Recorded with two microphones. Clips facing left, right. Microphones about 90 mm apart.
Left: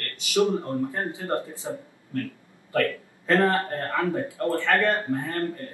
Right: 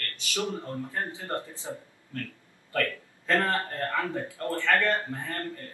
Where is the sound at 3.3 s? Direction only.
20° left (ahead or behind).